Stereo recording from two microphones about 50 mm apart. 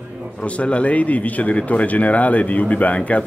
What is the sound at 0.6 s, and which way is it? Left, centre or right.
Speech, left.